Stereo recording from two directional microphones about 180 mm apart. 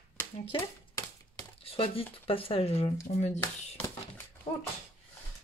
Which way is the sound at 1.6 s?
30° left (ahead or behind).